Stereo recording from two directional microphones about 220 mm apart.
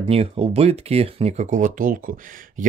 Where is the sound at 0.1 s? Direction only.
25° right (ahead or behind).